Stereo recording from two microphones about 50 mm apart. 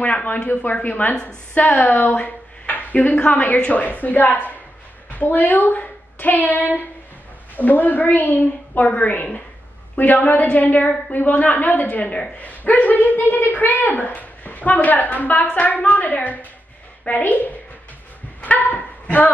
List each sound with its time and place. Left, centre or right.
0.0 s a woman's voice: left
2.1 s a sound: left
3.2 s a woman's voice: left
18.4 s dog: left